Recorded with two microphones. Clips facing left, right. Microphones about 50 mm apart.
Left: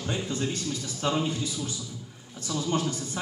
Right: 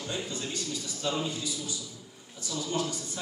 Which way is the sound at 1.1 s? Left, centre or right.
Left.